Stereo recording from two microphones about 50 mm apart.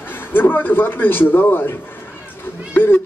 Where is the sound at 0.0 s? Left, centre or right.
Left.